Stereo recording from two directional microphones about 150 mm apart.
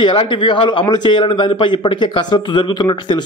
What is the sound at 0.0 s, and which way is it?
Speech, 35° left (ahead or behind).